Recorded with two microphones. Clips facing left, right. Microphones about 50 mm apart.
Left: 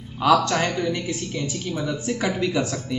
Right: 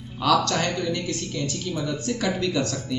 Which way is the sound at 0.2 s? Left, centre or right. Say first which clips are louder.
Left 3 dB; centre.